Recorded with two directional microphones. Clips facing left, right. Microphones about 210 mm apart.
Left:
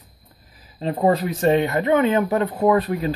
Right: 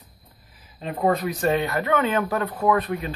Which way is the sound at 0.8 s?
25° left (ahead or behind).